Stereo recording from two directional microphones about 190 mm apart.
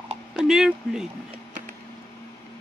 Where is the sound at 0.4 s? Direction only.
Centre (ahead or behind).